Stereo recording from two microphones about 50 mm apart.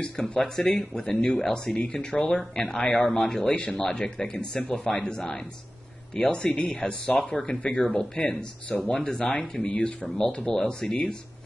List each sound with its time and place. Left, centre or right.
0.0 s speech: centre